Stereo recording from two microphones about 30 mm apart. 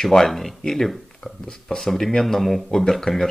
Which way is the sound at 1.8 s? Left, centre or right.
Centre.